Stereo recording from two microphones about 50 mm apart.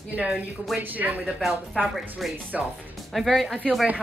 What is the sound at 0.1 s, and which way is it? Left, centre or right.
A woman's voice, right.